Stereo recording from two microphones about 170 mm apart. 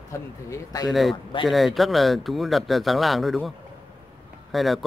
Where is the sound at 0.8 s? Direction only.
Centre (ahead or behind).